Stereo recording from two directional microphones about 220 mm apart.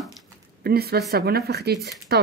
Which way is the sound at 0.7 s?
45° right (ahead or behind).